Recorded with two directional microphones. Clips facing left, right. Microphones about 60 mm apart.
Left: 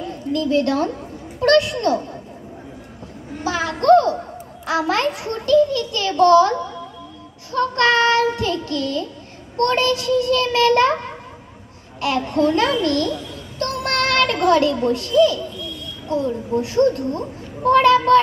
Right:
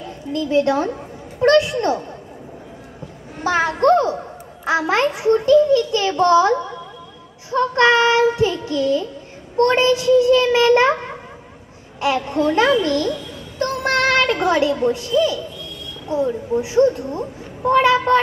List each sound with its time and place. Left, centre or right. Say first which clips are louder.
0.3 s a child's voice: right 1 dB; right
3.6 s a child's voice: left 3 dB; right
7.5 s a child's voice: right 2 dB; right
12.0 s a child's voice: even; right
13.6 s child singing: right 3 dB; right
16.1 s a child's voice: right 1 dB; centre